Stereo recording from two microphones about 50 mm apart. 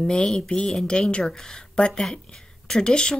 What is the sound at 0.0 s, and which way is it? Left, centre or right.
Speech, centre.